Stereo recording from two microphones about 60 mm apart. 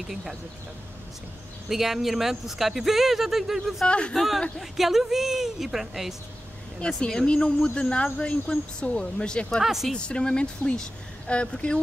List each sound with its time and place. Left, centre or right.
0.1 s speech: centre
1.7 s speech: centre
3.8 s speech: centre
4.1 s speech: centre
6.8 s speech: centre
9.6 s speech: centre
9.9 s speech: centre